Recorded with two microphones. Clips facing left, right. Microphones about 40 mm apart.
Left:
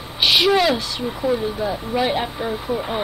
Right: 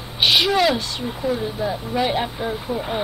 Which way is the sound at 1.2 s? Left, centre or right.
Centre.